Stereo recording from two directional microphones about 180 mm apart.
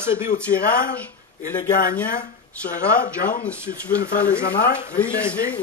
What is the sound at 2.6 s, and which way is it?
Speech, 5° left (ahead or behind).